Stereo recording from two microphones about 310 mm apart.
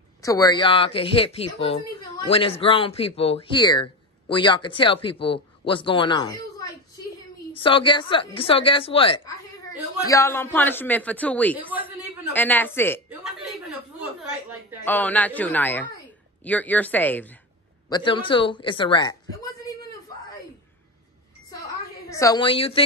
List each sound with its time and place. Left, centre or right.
0.2 s a man's voice: centre
11.5 s a man's voice: centre
12.3 s a man's voice: centre
14.9 s a man's voice: centre
22.1 s speech: centre